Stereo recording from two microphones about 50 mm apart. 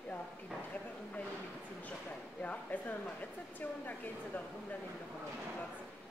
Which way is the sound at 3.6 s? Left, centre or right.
Left.